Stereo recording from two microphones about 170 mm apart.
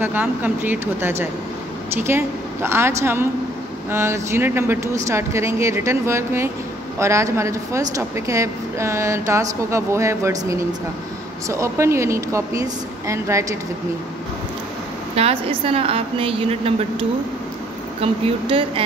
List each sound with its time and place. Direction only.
0.0 s speech: 10° right (ahead or behind)
15.1 s a woman's voice: 35° right (ahead or behind)
18.0 s a woman's voice: 35° right (ahead or behind)